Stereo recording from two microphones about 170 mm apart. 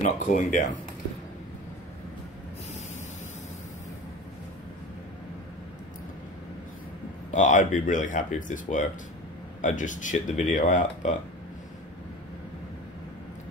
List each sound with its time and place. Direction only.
0.0 s speech: 45° left (ahead or behind)
7.2 s speech: 45° left (ahead or behind)